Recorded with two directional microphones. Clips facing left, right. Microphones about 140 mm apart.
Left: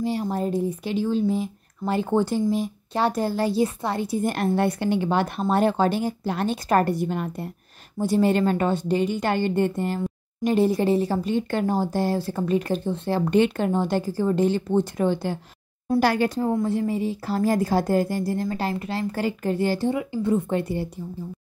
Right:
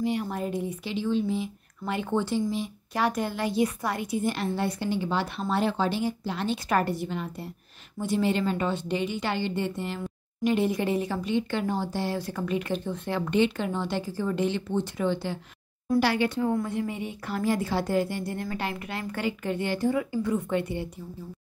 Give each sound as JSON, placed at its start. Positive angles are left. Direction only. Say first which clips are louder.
{"t": 0.0, "sound": "speech", "louder": "left 3 dB", "side_deg": 35}
{"t": 2.9, "sound": "speech", "louder": "left 4 dB", "side_deg": 30}
{"t": 4.2, "sound": "speech", "louder": "left 7 dB", "side_deg": 50}
{"t": 8.0, "sound": "speech", "louder": "left 5 dB", "side_deg": 40}
{"t": 12.2, "sound": "speech", "louder": "left 6 dB", "side_deg": 30}